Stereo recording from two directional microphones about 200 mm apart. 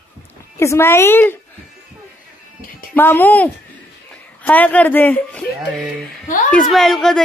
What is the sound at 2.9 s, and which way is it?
A woman's voice, 10° left (ahead or behind).